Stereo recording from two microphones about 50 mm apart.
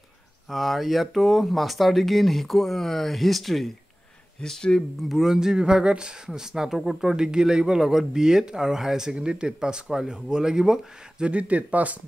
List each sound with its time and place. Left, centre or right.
0.5 s speech: centre
4.4 s speech: centre
5.0 s speech: centre; by 12.0 s right